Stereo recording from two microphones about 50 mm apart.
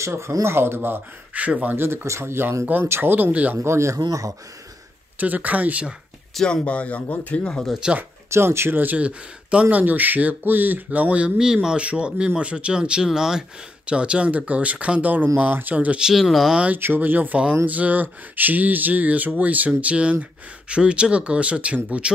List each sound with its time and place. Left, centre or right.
0.0 s speech: right
1.3 s speech: right
1.8 s speech: right
3.5 s a man's voice: right
5.2 s speech: right
6.4 s speech: left
7.8 s speech: centre
8.3 s speech: right
8.9 s speech: right
11.3 s speech: centre
13.8 s speech: right
16.0 s speech: centre
16.7 s speech: right